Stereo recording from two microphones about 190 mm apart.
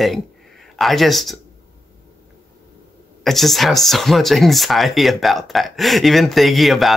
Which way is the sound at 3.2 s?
Centre (ahead or behind).